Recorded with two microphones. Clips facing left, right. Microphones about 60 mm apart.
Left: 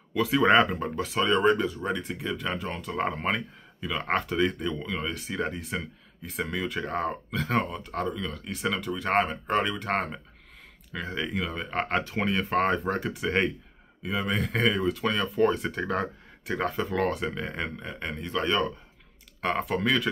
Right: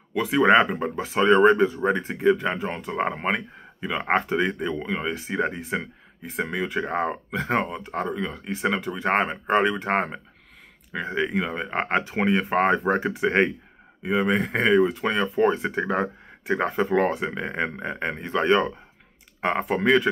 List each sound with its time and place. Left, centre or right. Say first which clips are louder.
0.1 s speech: right 3 dB; centre